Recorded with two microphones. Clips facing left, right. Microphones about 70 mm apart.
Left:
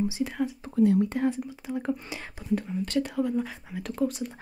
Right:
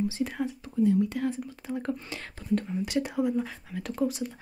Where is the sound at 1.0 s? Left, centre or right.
Left.